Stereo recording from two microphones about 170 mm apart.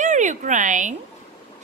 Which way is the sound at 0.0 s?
45° right (ahead or behind).